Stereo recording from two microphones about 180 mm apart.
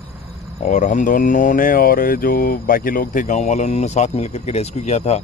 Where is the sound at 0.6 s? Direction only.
45° left (ahead or behind).